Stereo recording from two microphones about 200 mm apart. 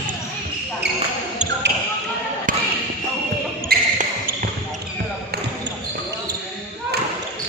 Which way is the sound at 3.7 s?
45° right (ahead or behind).